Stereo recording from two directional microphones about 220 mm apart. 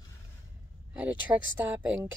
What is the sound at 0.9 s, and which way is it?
Speech, 5° right (ahead or behind).